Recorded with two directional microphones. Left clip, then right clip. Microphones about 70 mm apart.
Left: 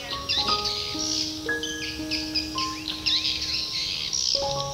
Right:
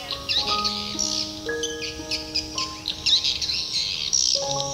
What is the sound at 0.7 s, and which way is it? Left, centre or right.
Music, right.